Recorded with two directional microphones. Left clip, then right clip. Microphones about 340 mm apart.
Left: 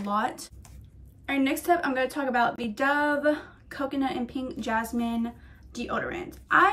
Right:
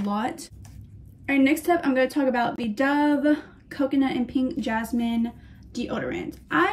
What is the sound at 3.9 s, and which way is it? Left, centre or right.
A woman's voice, left.